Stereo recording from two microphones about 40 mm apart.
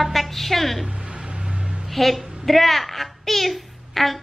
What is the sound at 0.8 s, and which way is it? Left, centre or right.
Music, right.